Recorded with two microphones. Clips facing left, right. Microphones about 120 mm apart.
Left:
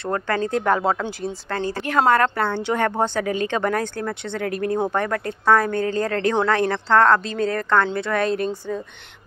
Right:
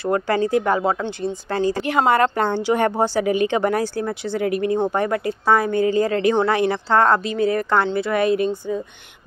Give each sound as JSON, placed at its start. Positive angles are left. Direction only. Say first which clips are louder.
{"t": 0.0, "sound": "a woman's voice", "louder": "right 4 dB", "side_deg": -10}
{"t": 1.5, "sound": "a woman's voice", "louder": "right 4 dB", "side_deg": -15}